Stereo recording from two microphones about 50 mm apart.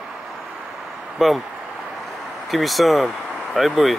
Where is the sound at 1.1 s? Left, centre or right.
Centre.